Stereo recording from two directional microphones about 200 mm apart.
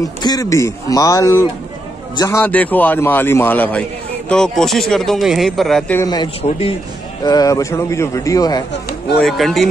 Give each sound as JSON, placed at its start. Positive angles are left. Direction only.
{"t": 0.0, "sound": "a man's voice", "side_deg": 20}
{"t": 6.0, "sound": "a man's voice", "side_deg": 20}
{"t": 9.2, "sound": "speech", "side_deg": 0}